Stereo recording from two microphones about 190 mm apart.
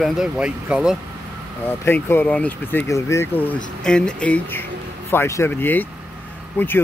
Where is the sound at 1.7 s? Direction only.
10° left (ahead or behind).